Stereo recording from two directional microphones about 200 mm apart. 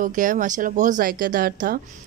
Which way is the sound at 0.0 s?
40° right (ahead or behind).